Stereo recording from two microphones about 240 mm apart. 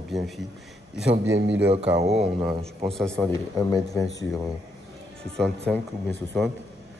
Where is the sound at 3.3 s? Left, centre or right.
Centre.